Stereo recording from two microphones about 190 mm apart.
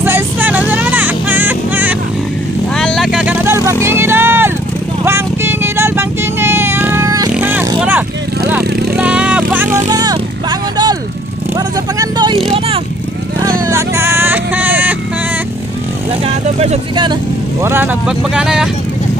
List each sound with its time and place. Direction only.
0.0 s music: 10° right (ahead or behind)
2.7 s vehicle: centre (ahead or behind)
9.8 s vehicle: 20° right (ahead or behind)
13.4 s vehicle: 15° right (ahead or behind)
16.5 s vehicle: 35° right (ahead or behind); by 18.7 s 5° right (ahead or behind)